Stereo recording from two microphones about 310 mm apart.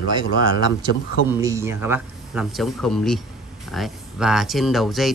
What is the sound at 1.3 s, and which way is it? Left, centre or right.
Speech, centre.